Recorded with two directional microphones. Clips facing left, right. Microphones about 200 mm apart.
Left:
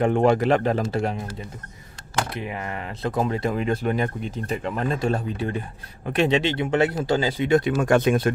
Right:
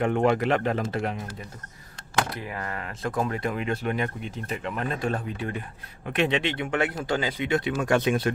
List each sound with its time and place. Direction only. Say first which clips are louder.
0.0 s speech: left 4 dB; 35° left (ahead or behind)
2.3 s speech: left 3 dB; 20° left (ahead or behind); by 8.3 s 45° left (ahead or behind)